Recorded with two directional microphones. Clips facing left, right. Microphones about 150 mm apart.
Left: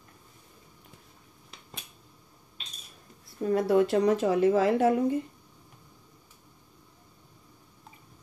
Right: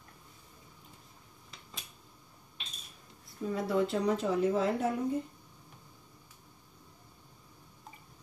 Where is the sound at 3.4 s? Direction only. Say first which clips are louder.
Left 7 dB; 65° left (ahead or behind); by 5.2 s 85° left.